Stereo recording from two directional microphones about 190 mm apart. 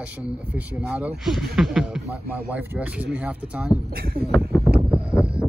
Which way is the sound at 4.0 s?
50° right (ahead or behind).